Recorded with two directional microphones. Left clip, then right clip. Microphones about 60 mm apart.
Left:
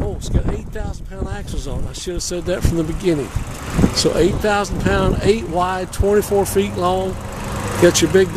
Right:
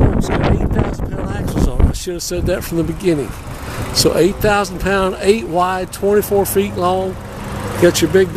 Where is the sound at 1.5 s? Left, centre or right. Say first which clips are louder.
Right 9 dB; right.